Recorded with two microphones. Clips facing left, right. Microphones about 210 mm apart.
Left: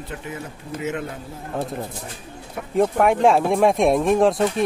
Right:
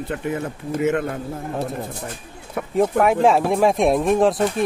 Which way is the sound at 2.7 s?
Centre (ahead or behind).